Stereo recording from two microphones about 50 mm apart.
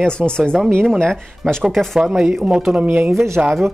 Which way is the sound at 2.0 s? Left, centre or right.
Centre.